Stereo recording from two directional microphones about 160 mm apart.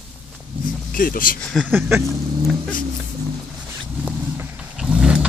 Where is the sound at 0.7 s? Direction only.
60° left (ahead or behind).